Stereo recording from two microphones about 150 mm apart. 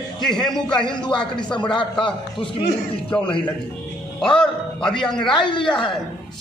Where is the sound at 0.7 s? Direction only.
30° left (ahead or behind).